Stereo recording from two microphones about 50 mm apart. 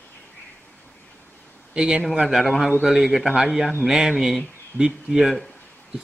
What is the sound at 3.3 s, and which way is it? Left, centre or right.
Speech, centre.